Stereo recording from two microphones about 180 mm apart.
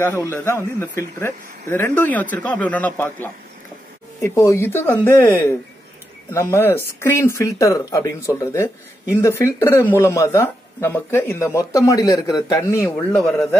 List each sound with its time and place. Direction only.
0.0 s speech: 15° left (ahead or behind)